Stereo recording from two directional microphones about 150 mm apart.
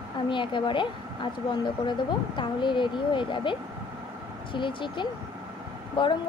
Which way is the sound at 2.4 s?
30° left (ahead or behind).